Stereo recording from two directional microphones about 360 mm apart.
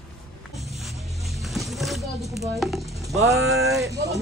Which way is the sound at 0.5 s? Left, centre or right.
Centre.